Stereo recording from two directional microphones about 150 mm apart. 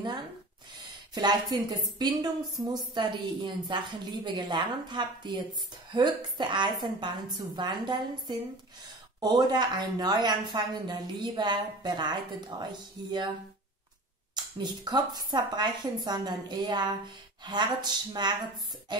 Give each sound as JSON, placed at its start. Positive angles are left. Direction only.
{"t": 1.1, "sound": "a woman's voice", "side_deg": -30}
{"t": 14.3, "sound": "a woman's voice", "side_deg": -30}
{"t": 18.9, "sound": "music", "side_deg": -30}